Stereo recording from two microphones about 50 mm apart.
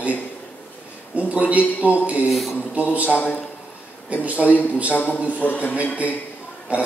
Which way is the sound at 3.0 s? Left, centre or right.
Left.